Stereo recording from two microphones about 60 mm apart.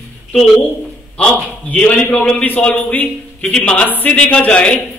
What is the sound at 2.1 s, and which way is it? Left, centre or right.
A man's voice, centre.